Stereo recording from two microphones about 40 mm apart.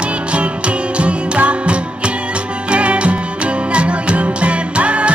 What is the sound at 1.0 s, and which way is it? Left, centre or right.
Music, right.